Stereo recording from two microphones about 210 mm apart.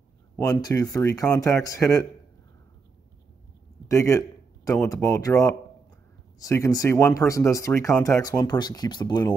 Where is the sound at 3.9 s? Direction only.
15° left (ahead or behind).